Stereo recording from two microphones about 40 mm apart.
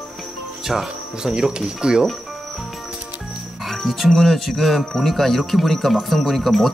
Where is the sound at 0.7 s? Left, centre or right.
Centre.